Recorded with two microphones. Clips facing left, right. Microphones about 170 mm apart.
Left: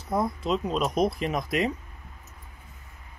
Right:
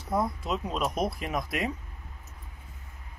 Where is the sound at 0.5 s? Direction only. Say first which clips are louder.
Left 4 dB; 5° right (ahead or behind).